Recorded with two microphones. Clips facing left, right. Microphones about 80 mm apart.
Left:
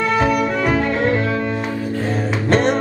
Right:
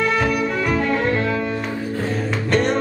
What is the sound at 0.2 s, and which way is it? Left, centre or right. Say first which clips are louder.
Music: left 3 dB; centre.